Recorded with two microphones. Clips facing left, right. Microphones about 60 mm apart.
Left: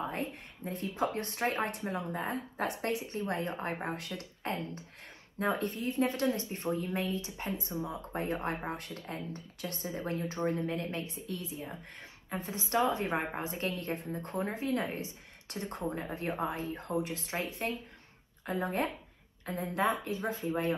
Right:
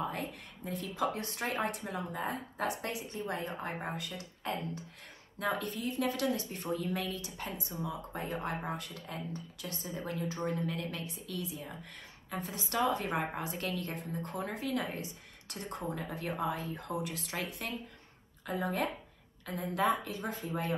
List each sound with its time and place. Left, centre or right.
0.1 s a woman's voice: left
5.4 s a woman's voice: left
7.8 s a woman's voice: left
17.0 s a woman's voice: left